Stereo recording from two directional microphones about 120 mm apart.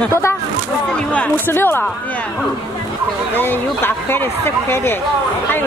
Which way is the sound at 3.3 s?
15° left (ahead or behind).